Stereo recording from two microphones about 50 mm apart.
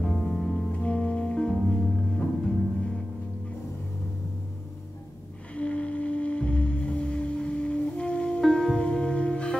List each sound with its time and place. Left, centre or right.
0.0 s music: centre
0.7 s music: left
5.5 s music: left
8.4 s music: centre